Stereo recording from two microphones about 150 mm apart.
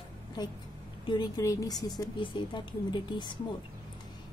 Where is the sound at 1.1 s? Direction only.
25° left (ahead or behind).